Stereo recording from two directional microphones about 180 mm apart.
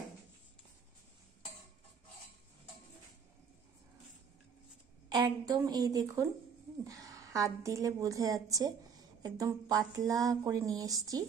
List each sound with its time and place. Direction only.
5.1 s a woman's voice: 25° right (ahead or behind)